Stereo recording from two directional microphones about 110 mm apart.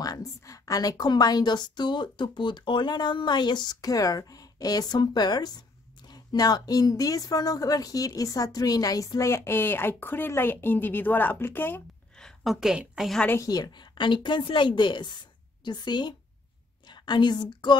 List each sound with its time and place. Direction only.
0.0 s a woman's voice: 30° left (ahead or behind); by 11.8 s 15° left (ahead or behind)
12.2 s a woman's voice: centre (ahead or behind)
13.4 s a woman's voice: 40° left (ahead or behind)